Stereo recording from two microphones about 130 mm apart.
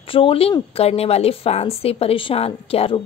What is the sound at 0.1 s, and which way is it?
A woman's voice, 45° left (ahead or behind).